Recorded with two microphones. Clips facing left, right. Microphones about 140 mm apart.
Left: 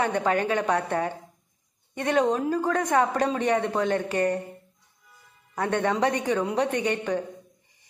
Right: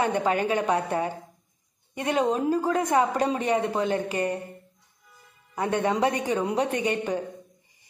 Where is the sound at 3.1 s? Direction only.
25° right (ahead or behind).